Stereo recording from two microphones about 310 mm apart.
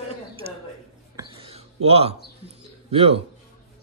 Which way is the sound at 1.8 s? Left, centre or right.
Centre.